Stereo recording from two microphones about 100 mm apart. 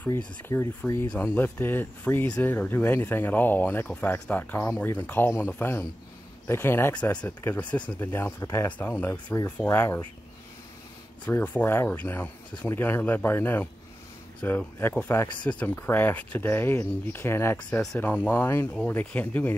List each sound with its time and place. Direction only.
0.0 s speech: 25° left (ahead or behind)
6.9 s speech: 10° left (ahead or behind); by 8.6 s 25° left (ahead or behind)
8.6 s speech: 15° left (ahead or behind)
11.2 s speech: 20° left (ahead or behind)